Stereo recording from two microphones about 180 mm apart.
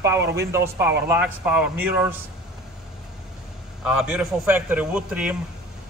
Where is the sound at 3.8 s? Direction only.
5° right (ahead or behind).